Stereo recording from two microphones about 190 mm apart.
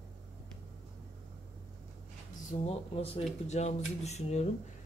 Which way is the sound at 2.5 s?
35° left (ahead or behind).